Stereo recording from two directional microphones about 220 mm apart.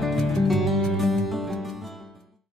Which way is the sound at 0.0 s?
Centre (ahead or behind).